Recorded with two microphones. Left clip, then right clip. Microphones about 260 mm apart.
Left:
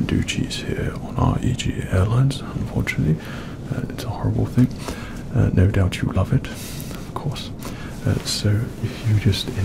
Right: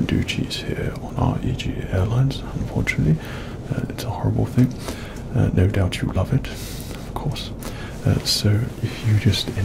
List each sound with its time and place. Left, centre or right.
0.0 s speech: centre
3.7 s speech: centre
5.3 s speech: centre
8.1 s speech: centre